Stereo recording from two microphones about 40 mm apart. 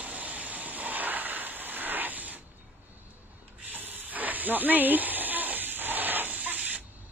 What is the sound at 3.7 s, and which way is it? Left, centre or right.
Hiss, right.